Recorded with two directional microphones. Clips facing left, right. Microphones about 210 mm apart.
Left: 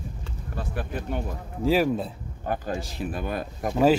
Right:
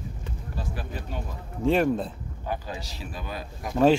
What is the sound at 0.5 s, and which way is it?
Speech, 55° left (ahead or behind).